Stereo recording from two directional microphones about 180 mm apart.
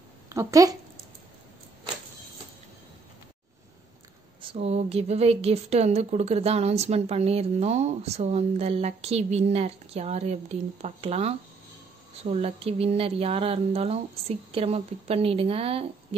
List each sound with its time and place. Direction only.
0.3 s speech: 20° right (ahead or behind)
4.4 s a woman's voice: 30° right (ahead or behind)